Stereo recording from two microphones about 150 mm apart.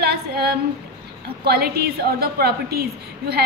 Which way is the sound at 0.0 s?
90° right.